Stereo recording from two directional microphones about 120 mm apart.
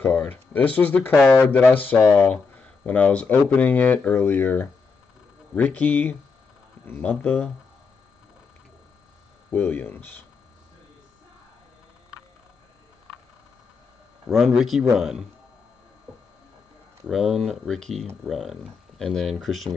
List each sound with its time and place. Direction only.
0.0 s speech: 15° left (ahead or behind)
9.5 s speech: 15° left (ahead or behind)
14.3 s speech: centre (ahead or behind)
17.1 s speech: centre (ahead or behind)